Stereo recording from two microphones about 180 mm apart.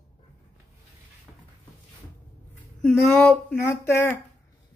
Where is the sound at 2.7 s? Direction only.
5° left (ahead or behind).